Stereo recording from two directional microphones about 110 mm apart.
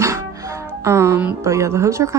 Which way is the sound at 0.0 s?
30° right (ahead or behind).